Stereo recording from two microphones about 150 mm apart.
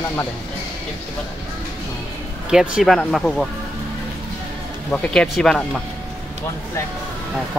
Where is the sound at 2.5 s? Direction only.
5° right (ahead or behind).